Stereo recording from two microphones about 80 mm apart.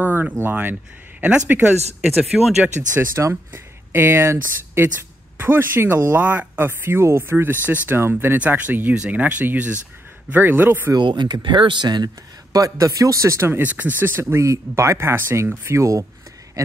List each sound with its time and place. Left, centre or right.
0.0 s a sound: right
0.4 s speech: right
2.3 s speech: centre
3.2 s speech: right
11.0 s speech: right
12.5 s speech: right
13.5 s speech: right
15.7 s speech: right